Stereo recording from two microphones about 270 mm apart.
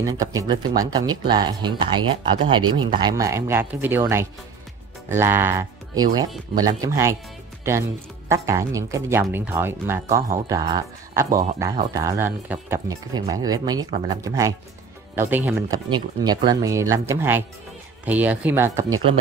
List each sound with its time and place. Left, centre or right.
0.0 s speech: centre
13.8 s speech: right
14.2 s speech: centre